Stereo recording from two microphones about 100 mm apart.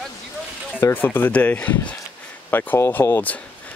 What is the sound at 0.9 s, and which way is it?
Speech, 20° left (ahead or behind).